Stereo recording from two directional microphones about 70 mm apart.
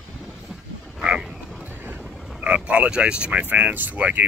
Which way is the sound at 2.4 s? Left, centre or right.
Right.